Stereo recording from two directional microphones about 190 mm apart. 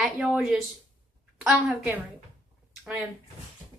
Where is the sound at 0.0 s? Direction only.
5° right (ahead or behind).